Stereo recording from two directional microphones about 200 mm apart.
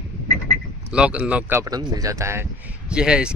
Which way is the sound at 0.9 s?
5° right (ahead or behind).